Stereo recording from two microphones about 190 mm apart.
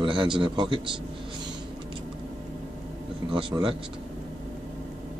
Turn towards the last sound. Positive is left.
turn(degrees=-25)  # may be behind; listen again after turning